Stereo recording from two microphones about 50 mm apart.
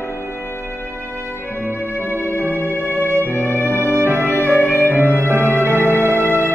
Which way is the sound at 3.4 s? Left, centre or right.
Left.